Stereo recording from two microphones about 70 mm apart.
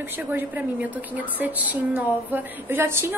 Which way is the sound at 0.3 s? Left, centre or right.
Right.